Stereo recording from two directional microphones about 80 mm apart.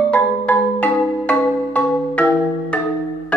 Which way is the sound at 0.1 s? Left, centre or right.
Centre.